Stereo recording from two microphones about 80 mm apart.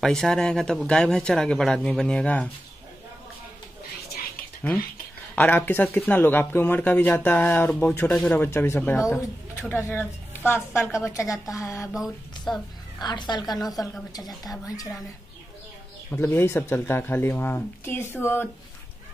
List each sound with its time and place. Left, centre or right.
0.0 s speech: centre
5.3 s speech: left
8.1 s speech: centre
8.5 s a woman's voice: left
11.9 s a sound: centre
13.0 s a woman's voice: left
13.8 s a woman's voice: left
16.1 s speech: left